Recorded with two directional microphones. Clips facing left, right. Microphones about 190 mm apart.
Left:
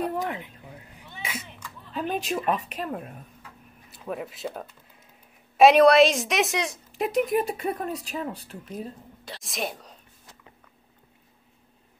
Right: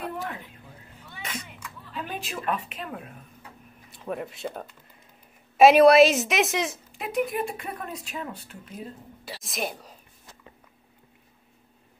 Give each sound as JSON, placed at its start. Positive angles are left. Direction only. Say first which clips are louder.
{"t": 0.0, "sound": "a sound", "louder": "left 5 dB", "side_deg": 15}
{"t": 0.9, "sound": "sneeze", "louder": "left 1 dB", "side_deg": 15}
{"t": 2.0, "sound": "speech", "louder": "left 7 dB", "side_deg": 40}
{"t": 3.9, "sound": "a woman's voice", "louder": "right 1 dB", "side_deg": 0}
{"t": 7.0, "sound": "speech", "louder": "left 4 dB", "side_deg": 40}
{"t": 8.7, "sound": "a woman's voice", "louder": "left 3 dB", "side_deg": -5}